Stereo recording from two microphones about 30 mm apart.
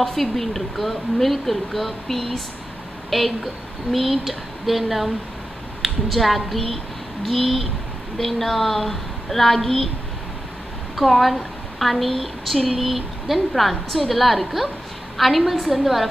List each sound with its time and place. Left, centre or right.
0.0 s a woman's voice: centre
11.1 s a woman's voice: centre